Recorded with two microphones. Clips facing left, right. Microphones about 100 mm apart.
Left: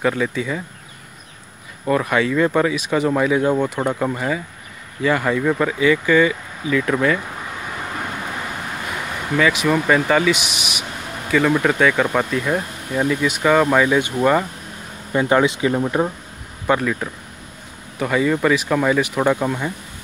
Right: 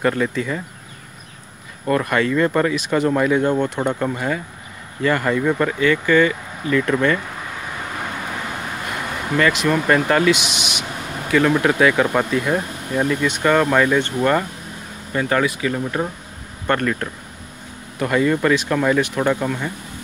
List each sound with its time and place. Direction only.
0.0 s speech: centre (ahead or behind)
1.9 s speech: 5° left (ahead or behind)
9.4 s speech: 5° left (ahead or behind)
15.1 s speech: 20° left (ahead or behind)
16.6 s speech: 5° left (ahead or behind)